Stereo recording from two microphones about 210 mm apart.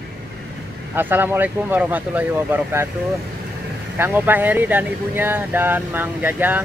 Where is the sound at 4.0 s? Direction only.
10° right (ahead or behind).